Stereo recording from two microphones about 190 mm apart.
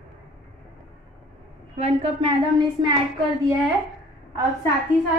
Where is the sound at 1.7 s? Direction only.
35° right (ahead or behind).